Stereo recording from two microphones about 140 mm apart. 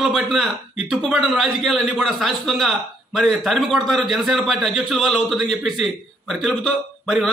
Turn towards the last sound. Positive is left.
turn(degrees=0)  # may be behind; listen again after turning